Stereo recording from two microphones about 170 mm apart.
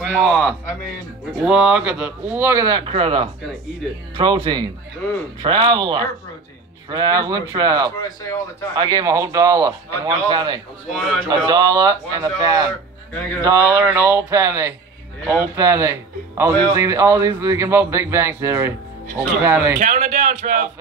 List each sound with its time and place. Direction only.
0.2 s a man's voice: centre (ahead or behind); by 2.8 s 20° right (ahead or behind)
2.8 s speech: 35° right (ahead or behind)
3.8 s a man's voice: centre (ahead or behind)
4.2 s speech: 25° right (ahead or behind)
8.0 s speech: 20° left (ahead or behind)
8.7 s speech: 25° right (ahead or behind)
10.9 s a man's voice: centre (ahead or behind)
11.2 s a man's voice: 25° right (ahead or behind)
19.8 s a man's voice: 50° right (ahead or behind)